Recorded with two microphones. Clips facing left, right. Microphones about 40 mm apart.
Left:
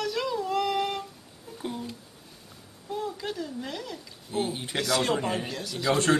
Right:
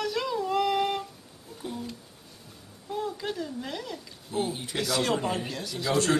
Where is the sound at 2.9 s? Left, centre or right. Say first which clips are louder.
Right 1 dB; centre.